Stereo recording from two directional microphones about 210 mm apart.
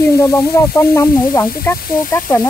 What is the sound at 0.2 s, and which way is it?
Speech, 15° left (ahead or behind).